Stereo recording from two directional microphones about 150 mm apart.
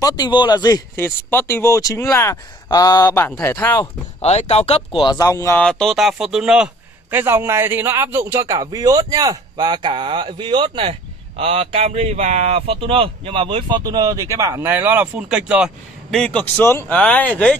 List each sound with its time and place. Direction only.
0.0 s speech: 30° left (ahead or behind)
0.9 s speech: 15° left (ahead or behind)
4.2 s speech: 45° left (ahead or behind)
5.0 s speech: 25° left (ahead or behind)
5.6 s a man's voice: 5° left (ahead or behind)
16.1 s speech: 5° left (ahead or behind)